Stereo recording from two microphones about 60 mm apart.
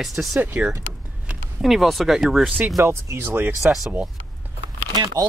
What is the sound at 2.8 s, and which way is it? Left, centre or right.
Speech, right.